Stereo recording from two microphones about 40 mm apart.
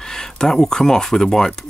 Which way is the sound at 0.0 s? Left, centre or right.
Centre.